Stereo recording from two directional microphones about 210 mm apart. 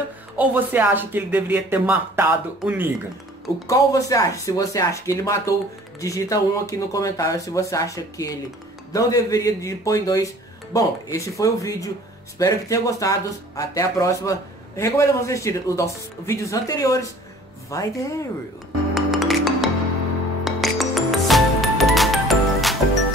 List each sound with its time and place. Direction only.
0.4 s speech: 10° right (ahead or behind)
3.6 s speech: 15° left (ahead or behind)
18.9 s music: centre (ahead or behind)